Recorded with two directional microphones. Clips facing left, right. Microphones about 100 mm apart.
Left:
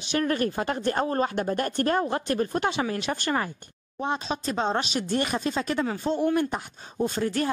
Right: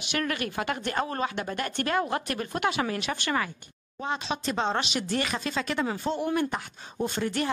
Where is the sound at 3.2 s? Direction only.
40° left (ahead or behind).